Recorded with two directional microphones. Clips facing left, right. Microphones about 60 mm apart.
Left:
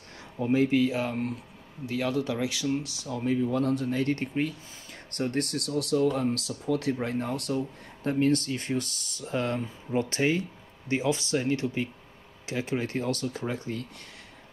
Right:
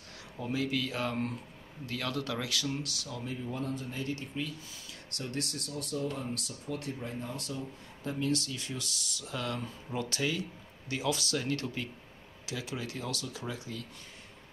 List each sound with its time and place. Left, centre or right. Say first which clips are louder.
0.4 s speech: left 9 dB; left
0.7 s speech: left 7 dB; centre
3.3 s speech: left 12 dB; left
5.6 s speech: left 14 dB; left
12.4 s speech: left 8 dB; left